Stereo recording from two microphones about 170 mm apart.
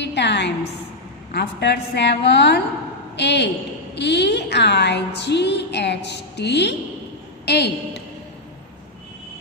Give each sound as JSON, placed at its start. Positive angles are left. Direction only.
{"t": 0.0, "sound": "a sound", "side_deg": 90}
{"t": 1.3, "sound": "a woman's voice", "side_deg": 75}
{"t": 7.4, "sound": "a man's voice", "side_deg": 80}